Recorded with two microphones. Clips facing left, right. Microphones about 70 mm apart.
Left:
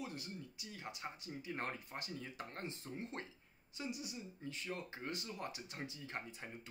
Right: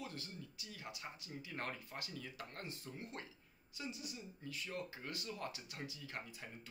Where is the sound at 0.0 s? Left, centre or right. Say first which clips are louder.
Left 2 dB; left.